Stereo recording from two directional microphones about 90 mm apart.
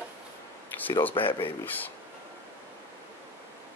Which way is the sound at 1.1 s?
75° left (ahead or behind).